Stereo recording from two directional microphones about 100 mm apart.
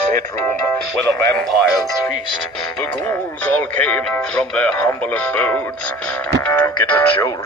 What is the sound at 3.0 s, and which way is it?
Speech, 15° left (ahead or behind).